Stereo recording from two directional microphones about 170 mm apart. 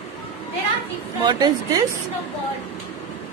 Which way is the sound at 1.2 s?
25° right (ahead or behind).